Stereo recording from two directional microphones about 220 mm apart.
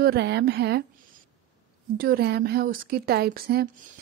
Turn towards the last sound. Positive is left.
turn(degrees=-45)  # may be behind; listen again after turning